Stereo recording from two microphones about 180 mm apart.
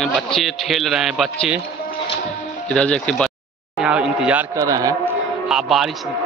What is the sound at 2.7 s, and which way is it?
Speech, 5° left (ahead or behind).